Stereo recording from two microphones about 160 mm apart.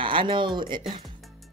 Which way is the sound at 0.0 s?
30° right (ahead or behind).